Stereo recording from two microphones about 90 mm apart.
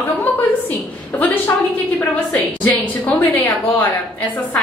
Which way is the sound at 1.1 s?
20° left (ahead or behind).